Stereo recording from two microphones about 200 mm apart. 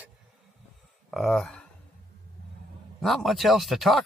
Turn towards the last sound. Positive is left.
turn(degrees=0)  # may be behind; listen again after turning